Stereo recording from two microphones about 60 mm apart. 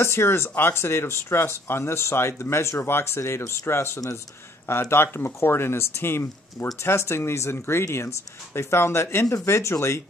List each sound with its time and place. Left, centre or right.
0.0 s speech: left